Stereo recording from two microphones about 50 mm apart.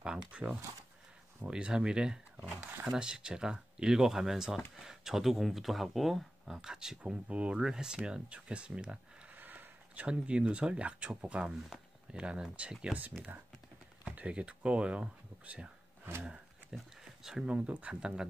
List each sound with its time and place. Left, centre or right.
0.0 s speech: centre
6.5 s speech: centre
9.3 s a sound: right
10.0 s speech: right
16.7 s speech: centre
17.5 s speech: right